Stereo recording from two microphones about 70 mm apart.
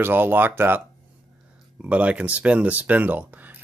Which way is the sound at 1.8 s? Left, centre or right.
Centre.